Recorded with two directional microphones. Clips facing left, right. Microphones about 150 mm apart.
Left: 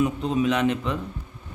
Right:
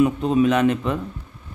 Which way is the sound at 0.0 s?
50° right (ahead or behind).